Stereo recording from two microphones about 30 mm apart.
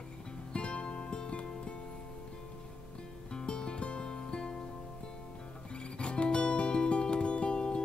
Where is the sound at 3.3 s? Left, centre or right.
Left.